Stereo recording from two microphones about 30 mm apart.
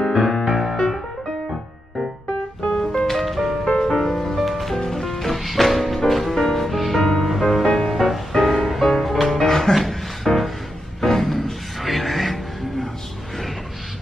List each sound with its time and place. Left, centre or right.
0.1 s music: centre
0.5 s music: centre
0.7 s music: centre
2.7 s music: centre
3.1 s music: centre
3.9 s music: centre
4.4 s music: centre
6.7 s music: centre
9.4 s music: centre